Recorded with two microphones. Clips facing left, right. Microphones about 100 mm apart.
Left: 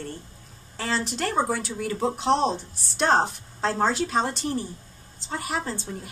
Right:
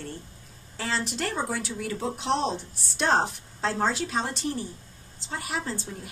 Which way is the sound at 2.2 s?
35° left (ahead or behind).